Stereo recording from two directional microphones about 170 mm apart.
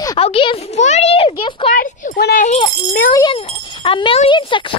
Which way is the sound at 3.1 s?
25° left (ahead or behind).